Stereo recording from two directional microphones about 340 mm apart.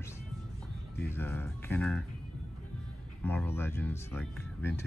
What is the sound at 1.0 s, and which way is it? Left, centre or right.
Speech, centre.